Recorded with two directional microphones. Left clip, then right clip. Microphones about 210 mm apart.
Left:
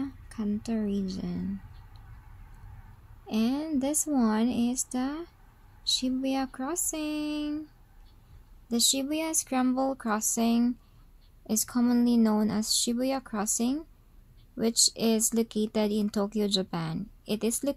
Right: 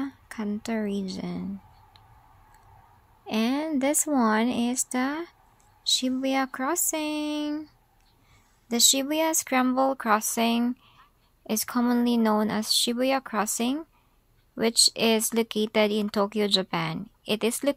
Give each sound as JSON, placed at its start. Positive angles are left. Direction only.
{"t": 0.0, "sound": "speech", "side_deg": -15}
{"t": 3.3, "sound": "speech", "side_deg": -15}
{"t": 8.6, "sound": "speech", "side_deg": -20}